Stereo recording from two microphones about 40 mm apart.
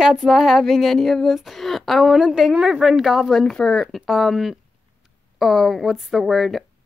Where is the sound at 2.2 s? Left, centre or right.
Centre.